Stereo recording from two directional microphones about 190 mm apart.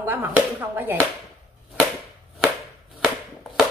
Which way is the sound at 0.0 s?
10° right (ahead or behind).